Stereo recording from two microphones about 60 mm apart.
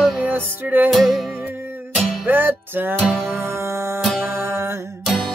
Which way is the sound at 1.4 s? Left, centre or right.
Right.